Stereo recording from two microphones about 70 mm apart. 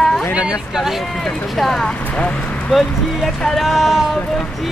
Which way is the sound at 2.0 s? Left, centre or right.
Centre.